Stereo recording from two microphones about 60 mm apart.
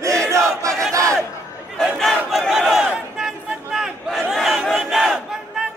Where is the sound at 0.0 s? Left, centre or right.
Right.